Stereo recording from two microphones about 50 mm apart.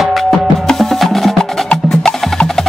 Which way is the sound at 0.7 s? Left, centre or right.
Centre.